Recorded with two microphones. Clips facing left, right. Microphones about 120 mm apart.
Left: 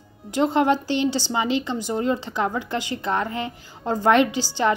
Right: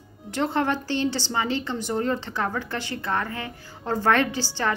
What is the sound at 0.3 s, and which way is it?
A woman's voice, 15° left (ahead or behind).